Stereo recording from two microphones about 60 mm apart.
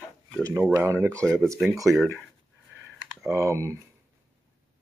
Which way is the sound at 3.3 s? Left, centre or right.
Right.